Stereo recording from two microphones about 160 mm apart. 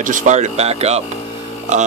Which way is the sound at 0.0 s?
55° right (ahead or behind).